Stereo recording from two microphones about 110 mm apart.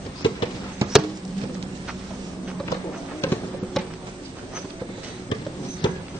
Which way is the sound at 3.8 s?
5° left (ahead or behind).